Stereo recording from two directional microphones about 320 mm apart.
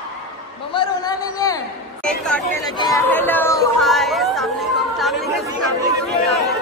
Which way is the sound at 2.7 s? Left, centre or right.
Centre.